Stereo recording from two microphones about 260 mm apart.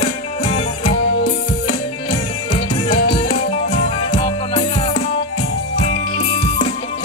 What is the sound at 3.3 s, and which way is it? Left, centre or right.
Music, left.